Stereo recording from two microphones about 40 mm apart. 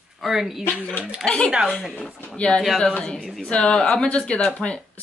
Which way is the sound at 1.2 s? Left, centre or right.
Left.